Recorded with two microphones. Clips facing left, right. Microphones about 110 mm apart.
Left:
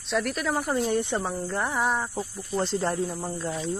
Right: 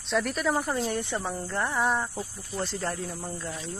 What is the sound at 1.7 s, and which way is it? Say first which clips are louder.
Speech: right 1 dB; centre (ahead or behind).